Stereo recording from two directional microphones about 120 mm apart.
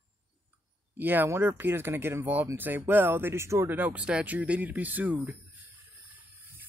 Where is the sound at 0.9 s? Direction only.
15° right (ahead or behind).